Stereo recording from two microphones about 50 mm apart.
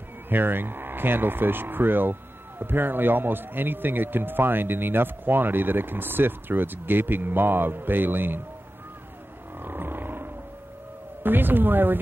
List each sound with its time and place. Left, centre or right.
0.3 s speech: right
9.6 s roaring cats: right
11.2 s speech: right